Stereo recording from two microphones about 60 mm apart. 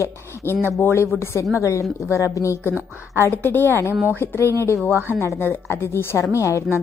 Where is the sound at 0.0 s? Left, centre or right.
Left.